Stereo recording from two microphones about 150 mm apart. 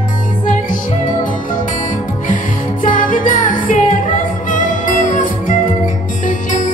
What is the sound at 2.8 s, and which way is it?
Music, 65° left (ahead or behind).